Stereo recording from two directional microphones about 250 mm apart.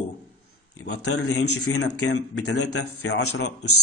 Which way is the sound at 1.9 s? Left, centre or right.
Left.